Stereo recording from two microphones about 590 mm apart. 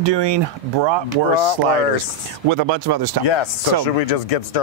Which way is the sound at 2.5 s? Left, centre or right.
Right.